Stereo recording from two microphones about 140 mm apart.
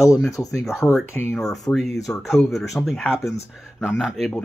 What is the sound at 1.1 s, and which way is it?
Speech, 5° left (ahead or behind).